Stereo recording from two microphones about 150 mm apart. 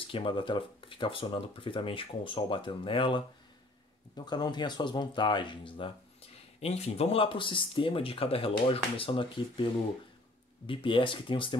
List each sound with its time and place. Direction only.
0.0 s speech: 35° left (ahead or behind)
10.7 s speech: 35° left (ahead or behind)